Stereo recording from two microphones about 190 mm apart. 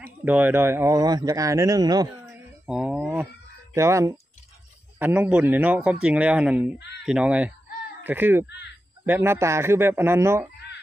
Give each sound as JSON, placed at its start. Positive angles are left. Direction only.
{"t": 0.0, "sound": "speech", "side_deg": -10}
{"t": 2.6, "sound": "speech", "side_deg": -5}